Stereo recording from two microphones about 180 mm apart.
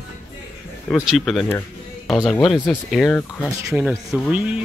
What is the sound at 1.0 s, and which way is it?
Speech, centre (ahead or behind).